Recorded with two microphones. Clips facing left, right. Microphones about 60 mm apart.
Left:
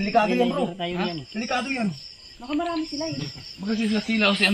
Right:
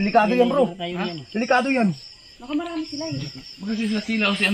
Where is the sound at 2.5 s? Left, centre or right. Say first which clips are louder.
Right 1 dB; centre.